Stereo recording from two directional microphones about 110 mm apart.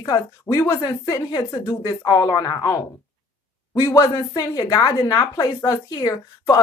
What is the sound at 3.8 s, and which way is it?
Speech, 30° left (ahead or behind).